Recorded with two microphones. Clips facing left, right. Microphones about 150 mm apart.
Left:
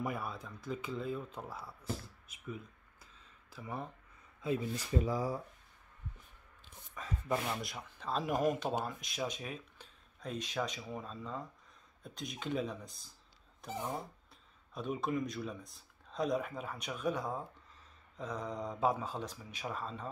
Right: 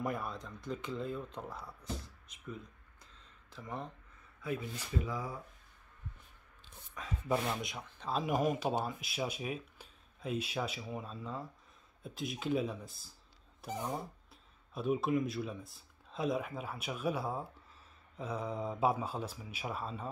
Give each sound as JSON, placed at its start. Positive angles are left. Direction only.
{"t": 0.0, "sound": "speech", "side_deg": 5}
{"t": 4.4, "sound": "speech", "side_deg": 25}
{"t": 4.9, "sound": "speech", "side_deg": 35}
{"t": 7.0, "sound": "speech", "side_deg": 0}
{"t": 13.6, "sound": "a sound", "side_deg": -15}
{"t": 14.7, "sound": "speech", "side_deg": -5}